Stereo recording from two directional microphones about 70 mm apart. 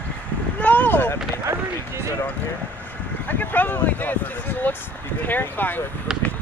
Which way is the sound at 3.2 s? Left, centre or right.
Left.